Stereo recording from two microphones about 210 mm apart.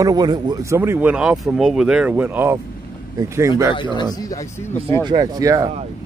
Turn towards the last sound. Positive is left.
turn(degrees=-15)  # may be behind; listen again after turning